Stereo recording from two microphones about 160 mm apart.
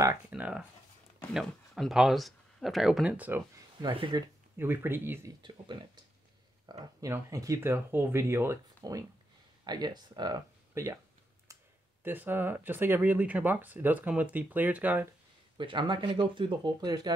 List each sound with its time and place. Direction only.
0.3 s speech: 5° right (ahead or behind)
3.8 s speech: 30° right (ahead or behind)
4.6 s speech: 15° right (ahead or behind)
5.4 s speech: 30° right (ahead or behind)
12.0 s speech: 10° right (ahead or behind)
15.5 s speech: 30° right (ahead or behind)